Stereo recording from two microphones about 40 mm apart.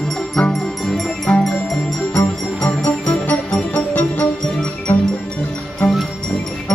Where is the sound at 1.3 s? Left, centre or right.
Left.